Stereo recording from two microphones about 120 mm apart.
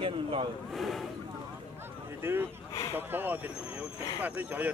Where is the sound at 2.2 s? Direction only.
20° right (ahead or behind).